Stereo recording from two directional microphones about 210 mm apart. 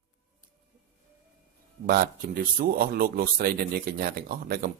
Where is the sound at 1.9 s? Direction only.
45° right (ahead or behind).